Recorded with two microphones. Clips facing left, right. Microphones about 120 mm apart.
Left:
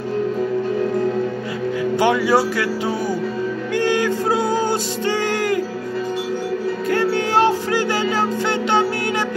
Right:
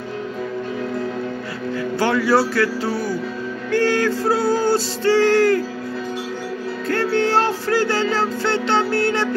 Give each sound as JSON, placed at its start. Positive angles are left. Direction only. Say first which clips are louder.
{"t": 2.0, "sound": "speech", "louder": "even", "side_deg": 15}
{"t": 3.7, "sound": "music", "louder": "right 1 dB", "side_deg": 15}
{"t": 6.9, "sound": "music", "louder": "right 1 dB", "side_deg": 15}